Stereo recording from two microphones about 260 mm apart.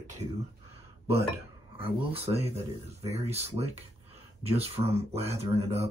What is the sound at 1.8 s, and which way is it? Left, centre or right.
Speech, right.